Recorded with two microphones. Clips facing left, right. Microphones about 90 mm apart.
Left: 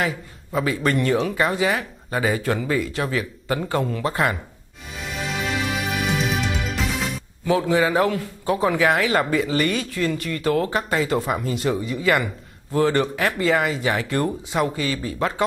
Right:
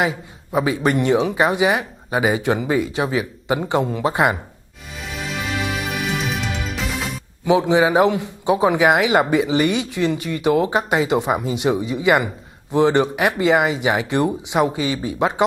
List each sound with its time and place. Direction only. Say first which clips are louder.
0.0 s speech: right 4 dB; 20° right (ahead or behind)
6.3 s music: left 1 dB; centre (ahead or behind)
7.4 s speech: right 4 dB; 20° right (ahead or behind)